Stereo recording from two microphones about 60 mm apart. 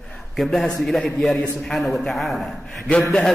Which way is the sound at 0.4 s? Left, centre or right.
Centre.